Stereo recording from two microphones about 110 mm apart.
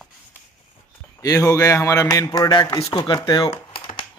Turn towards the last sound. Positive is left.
turn(degrees=45)  # may be behind; listen again after turning